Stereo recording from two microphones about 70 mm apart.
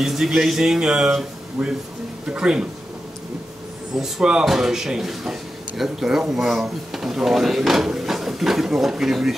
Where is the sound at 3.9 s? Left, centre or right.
Centre.